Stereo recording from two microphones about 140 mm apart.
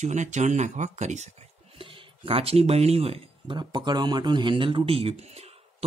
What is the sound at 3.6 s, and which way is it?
Speech, 30° right (ahead or behind).